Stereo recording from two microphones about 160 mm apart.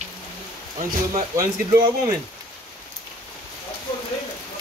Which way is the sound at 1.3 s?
20° right (ahead or behind).